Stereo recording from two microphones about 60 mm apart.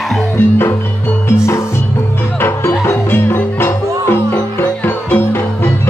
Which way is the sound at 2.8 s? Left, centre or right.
Left.